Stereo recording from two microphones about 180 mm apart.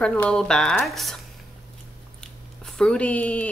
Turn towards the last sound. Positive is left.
turn(degrees=10)  # may be behind; listen again after turning